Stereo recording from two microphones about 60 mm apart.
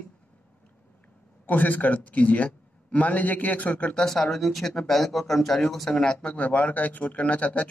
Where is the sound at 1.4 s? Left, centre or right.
Left.